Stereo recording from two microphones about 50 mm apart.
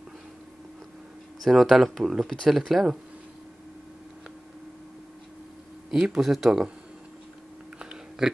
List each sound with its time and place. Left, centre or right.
1.4 s speech: centre
5.9 s speech: centre
7.8 s a sound: centre